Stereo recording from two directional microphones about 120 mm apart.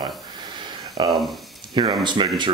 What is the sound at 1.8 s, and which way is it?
Speech, 40° right (ahead or behind).